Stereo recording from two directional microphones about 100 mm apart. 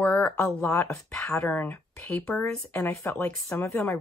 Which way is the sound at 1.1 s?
10° left (ahead or behind).